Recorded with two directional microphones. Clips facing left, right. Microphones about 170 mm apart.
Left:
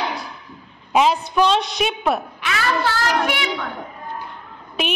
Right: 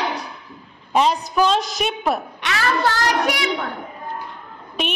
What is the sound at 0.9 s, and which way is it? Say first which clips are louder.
A woman's voice: left 1 dB; centre (ahead or behind).